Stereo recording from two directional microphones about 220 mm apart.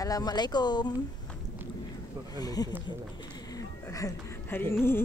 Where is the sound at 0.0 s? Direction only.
15° left (ahead or behind).